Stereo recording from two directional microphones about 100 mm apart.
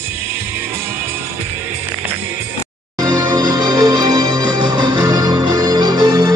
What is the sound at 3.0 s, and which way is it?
Music, 35° right (ahead or behind).